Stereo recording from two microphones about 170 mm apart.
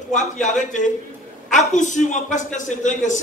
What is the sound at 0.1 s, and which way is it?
A man's voice, 45° left (ahead or behind).